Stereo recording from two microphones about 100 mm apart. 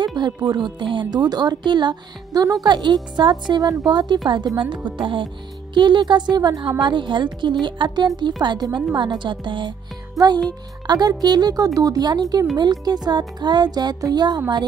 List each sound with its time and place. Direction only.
0.0 s speech: 45° right (ahead or behind)